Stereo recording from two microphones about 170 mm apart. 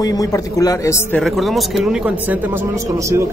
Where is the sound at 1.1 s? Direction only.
Centre (ahead or behind).